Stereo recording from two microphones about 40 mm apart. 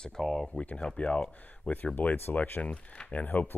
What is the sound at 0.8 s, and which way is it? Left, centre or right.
Speech, left.